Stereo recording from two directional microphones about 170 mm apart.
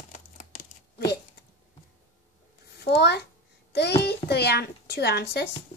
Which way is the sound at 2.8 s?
80° left.